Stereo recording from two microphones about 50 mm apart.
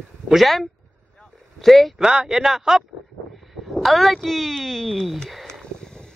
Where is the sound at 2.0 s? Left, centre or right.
Centre.